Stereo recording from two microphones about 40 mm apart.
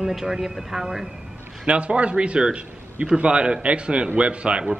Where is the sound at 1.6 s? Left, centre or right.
Right.